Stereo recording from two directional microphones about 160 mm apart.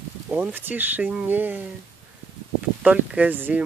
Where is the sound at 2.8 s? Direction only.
10° right (ahead or behind).